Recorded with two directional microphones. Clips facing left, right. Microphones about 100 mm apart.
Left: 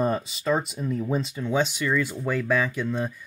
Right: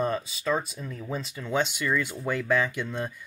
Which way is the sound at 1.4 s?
15° left (ahead or behind).